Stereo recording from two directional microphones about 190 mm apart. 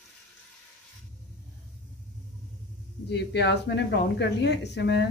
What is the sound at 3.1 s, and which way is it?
Speech, 65° left (ahead or behind).